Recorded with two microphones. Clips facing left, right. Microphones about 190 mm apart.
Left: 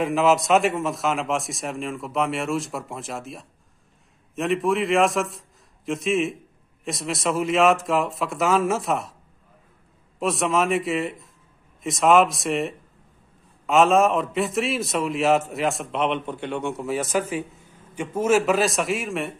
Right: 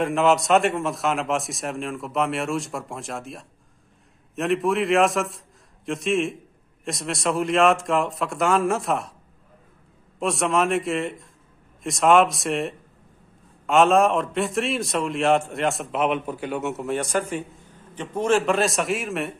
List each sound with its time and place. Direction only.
0.0 s a man's voice: centre (ahead or behind)
10.1 s a man's voice: centre (ahead or behind)